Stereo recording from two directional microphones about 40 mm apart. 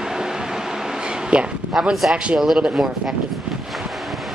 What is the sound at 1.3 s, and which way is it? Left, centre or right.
Speech, right.